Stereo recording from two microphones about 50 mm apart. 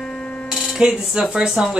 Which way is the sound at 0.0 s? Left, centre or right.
Centre.